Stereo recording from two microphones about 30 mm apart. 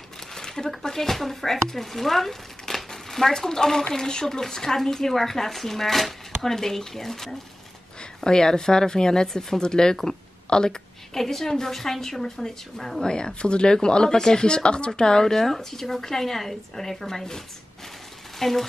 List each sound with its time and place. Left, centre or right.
0.3 s a sound: centre
0.8 s speech: centre
2.6 s crumpling: centre
3.8 s speech: left
8.2 s speech: left
11.1 s speech: centre
13.0 s speech: left
15.0 s speech: left
15.4 s speech: centre
18.4 s speech: centre